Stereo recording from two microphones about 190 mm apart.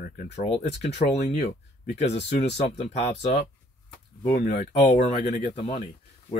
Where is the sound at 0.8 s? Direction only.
40° left (ahead or behind).